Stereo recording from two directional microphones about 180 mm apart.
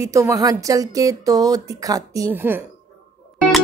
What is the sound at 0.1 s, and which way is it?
Speech, 15° right (ahead or behind).